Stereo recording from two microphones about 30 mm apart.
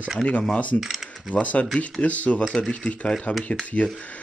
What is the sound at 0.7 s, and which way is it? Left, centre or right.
Speech, left.